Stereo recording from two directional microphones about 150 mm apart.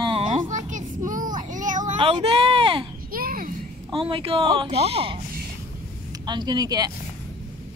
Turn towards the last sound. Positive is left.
turn(degrees=-25)  # may be behind; listen again after turning